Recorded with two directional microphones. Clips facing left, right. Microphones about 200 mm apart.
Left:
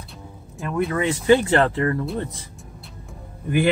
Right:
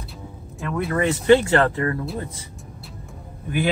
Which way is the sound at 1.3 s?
20° left (ahead or behind).